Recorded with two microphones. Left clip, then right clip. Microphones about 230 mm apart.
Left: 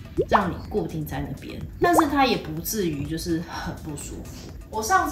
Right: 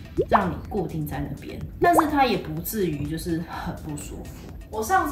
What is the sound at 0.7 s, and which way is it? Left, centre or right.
A woman's voice, centre.